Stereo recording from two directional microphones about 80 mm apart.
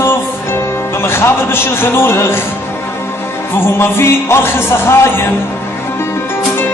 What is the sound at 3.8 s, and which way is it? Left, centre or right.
Speech, left.